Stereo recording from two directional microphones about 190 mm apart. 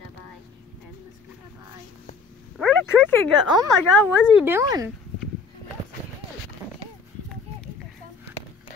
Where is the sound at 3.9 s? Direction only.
10° left (ahead or behind).